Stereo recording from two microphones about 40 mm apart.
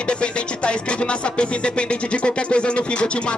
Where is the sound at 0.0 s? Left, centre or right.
Left.